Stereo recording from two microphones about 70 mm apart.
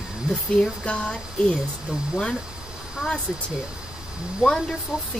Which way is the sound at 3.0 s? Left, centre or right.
Centre.